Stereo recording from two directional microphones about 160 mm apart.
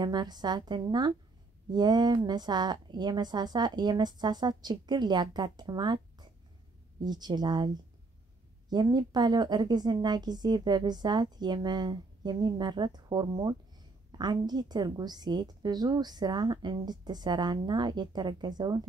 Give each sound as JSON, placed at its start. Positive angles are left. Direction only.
{"t": 0.0, "sound": "a woman's voice", "side_deg": -25}